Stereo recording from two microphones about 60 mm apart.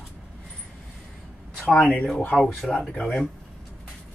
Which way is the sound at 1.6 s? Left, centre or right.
Centre.